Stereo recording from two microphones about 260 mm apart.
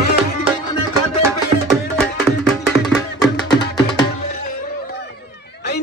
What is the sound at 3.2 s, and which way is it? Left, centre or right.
Music, centre.